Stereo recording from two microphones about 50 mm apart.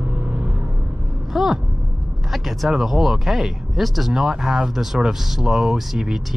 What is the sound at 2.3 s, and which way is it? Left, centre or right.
Speech, centre.